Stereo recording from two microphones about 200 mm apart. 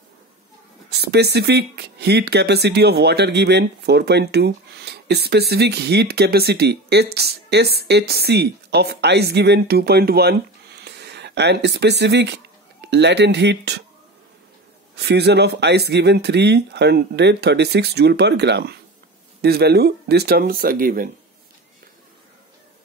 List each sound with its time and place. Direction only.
0.8 s speech: 55° right (ahead or behind)
15.0 s speech: 55° right (ahead or behind)